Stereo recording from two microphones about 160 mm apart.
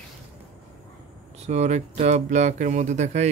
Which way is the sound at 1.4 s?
45° right (ahead or behind).